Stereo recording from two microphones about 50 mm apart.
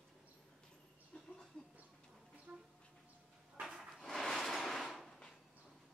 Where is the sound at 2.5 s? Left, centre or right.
Right.